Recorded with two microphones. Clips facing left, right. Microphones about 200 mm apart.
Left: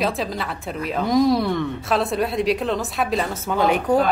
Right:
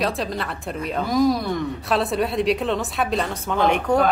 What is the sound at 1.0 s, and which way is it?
Speech, 25° left (ahead or behind).